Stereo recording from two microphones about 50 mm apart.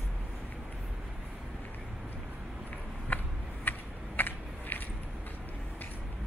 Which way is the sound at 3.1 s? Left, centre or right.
Left.